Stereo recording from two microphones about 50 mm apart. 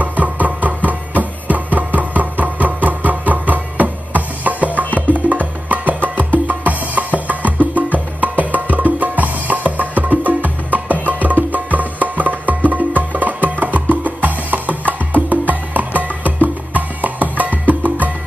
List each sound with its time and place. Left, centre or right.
0.0 s music: right
8.5 s music: right